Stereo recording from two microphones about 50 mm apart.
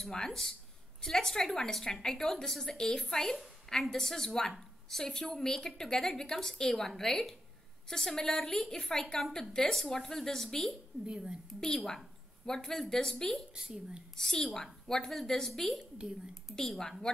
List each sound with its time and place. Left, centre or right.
0.0 s a woman's voice: centre
11.1 s a woman's voice: centre
11.6 s a woman's voice: centre
13.6 s a woman's voice: centre
14.1 s a woman's voice: centre